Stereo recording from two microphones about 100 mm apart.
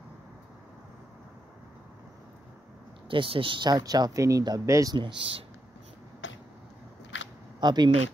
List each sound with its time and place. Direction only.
3.1 s speech: 60° right (ahead or behind); by 4.9 s 35° right (ahead or behind)
4.9 s speech: 55° right (ahead or behind)
7.6 s speech: 45° right (ahead or behind)